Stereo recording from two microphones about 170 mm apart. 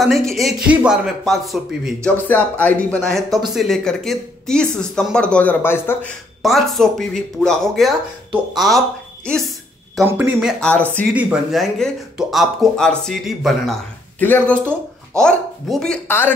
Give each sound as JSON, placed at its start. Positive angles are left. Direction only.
{"t": 0.0, "sound": "speech", "side_deg": 0}
{"t": 2.0, "sound": "speech", "side_deg": 10}
{"t": 6.4, "sound": "speech", "side_deg": 0}
{"t": 10.0, "sound": "speech", "side_deg": -10}